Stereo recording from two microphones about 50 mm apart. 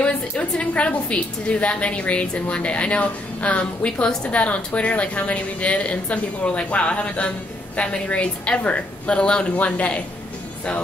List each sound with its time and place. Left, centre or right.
0.0 s a woman's voice: left